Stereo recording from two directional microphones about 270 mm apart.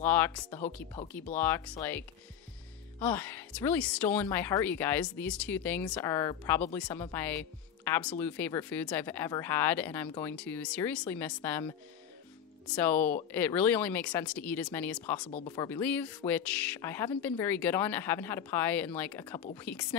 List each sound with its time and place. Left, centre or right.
0.0 s speech: centre
15.3 s speech: centre